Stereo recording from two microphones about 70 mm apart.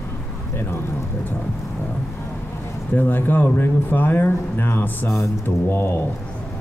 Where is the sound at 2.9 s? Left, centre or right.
Left.